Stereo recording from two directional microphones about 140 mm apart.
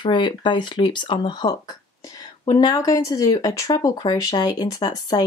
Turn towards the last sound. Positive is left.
turn(degrees=25)  # may be behind; listen again after turning